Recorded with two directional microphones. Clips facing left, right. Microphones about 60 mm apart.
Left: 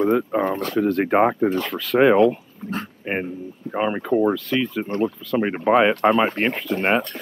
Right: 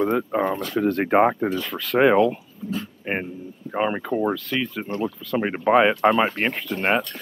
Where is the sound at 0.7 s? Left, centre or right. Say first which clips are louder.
Even; centre.